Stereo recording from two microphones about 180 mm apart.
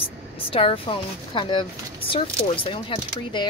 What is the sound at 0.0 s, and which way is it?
Speech, 30° left (ahead or behind).